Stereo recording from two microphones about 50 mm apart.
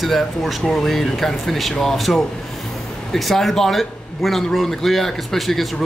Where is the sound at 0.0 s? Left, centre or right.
Centre.